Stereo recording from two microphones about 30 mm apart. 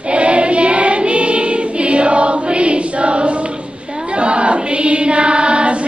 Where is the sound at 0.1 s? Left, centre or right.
Right.